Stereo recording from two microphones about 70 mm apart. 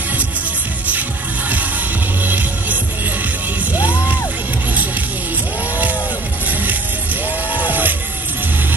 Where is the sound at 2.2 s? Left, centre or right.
Right.